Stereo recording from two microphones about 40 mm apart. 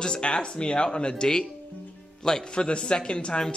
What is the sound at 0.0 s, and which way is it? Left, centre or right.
Speech, left.